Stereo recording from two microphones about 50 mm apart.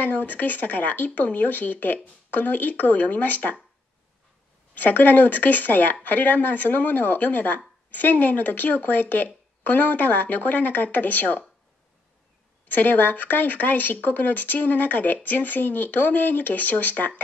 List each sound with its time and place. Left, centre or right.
0.0 s speech: left
4.7 s speech: left
12.6 s speech: left